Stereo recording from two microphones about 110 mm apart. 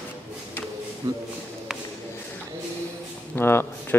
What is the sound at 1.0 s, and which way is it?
Speech, 35° right (ahead or behind).